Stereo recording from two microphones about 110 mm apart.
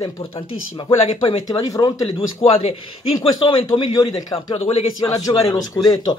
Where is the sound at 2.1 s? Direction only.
60° left (ahead or behind).